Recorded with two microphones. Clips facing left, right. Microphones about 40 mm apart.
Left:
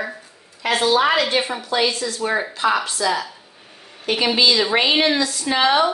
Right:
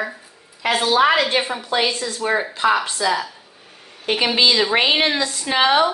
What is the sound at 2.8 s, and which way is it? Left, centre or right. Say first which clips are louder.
Speech: even; right.